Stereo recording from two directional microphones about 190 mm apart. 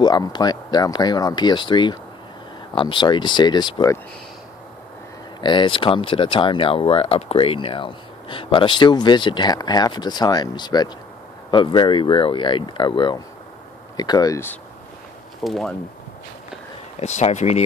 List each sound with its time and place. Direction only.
0.0 s speech: 20° left (ahead or behind)
5.4 s speech: 25° left (ahead or behind)
15.4 s speech: centre (ahead or behind)
17.0 s speech: 35° left (ahead or behind)